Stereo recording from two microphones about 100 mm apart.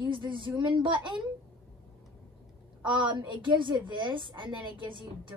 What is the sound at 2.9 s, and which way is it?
A woman's voice, 50° right (ahead or behind).